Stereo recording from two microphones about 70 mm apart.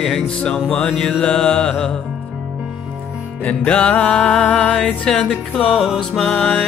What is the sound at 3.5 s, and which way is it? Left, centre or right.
Music, centre.